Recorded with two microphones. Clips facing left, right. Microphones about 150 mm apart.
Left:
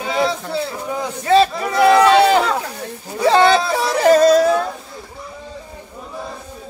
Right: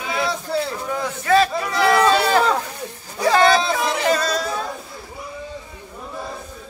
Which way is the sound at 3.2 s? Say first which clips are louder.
Left 3 dB; 25° left (ahead or behind).